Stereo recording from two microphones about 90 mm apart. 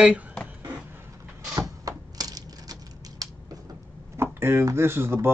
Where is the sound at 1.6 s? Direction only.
45° right (ahead or behind).